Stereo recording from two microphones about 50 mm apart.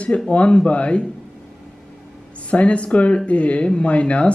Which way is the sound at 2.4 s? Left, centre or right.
Left.